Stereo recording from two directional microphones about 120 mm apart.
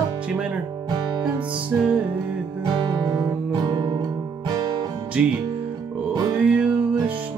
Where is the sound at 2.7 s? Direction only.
40° right (ahead or behind).